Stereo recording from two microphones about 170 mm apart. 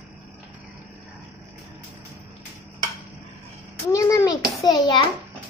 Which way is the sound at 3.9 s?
20° left (ahead or behind).